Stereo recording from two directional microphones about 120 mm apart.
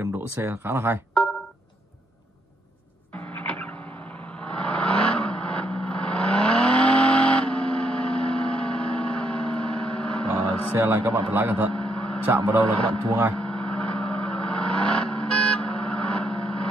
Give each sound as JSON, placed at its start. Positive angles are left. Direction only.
{"t": 0.0, "sound": "speech", "side_deg": -20}
{"t": 4.4, "sound": "vehicle", "side_deg": 10}
{"t": 10.3, "sound": "vehicle", "side_deg": -25}
{"t": 11.7, "sound": "vehicle", "side_deg": 10}
{"t": 12.3, "sound": "a man's voice", "side_deg": -25}
{"t": 13.3, "sound": "vehicle", "side_deg": 10}